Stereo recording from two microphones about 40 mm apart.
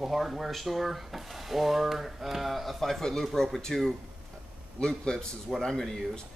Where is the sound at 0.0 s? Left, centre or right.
Centre.